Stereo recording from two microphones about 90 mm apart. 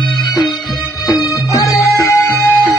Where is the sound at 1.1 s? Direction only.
40° left (ahead or behind).